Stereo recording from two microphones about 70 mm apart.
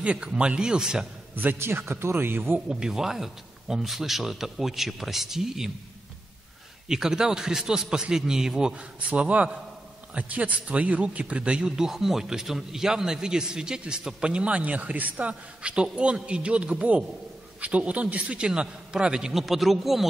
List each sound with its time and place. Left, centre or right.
0.0 s a man's voice: centre
1.3 s a man's voice: right
2.7 s speech: centre
6.9 s a man's voice: centre